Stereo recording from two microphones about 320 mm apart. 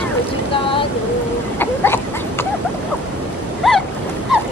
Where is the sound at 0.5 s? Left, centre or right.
Centre.